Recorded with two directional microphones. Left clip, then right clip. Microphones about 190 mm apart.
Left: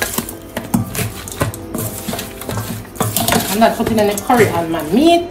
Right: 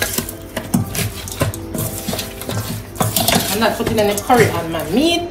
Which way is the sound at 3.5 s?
55° left (ahead or behind).